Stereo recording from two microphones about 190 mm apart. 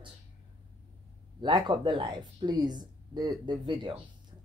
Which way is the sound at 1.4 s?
25° right (ahead or behind).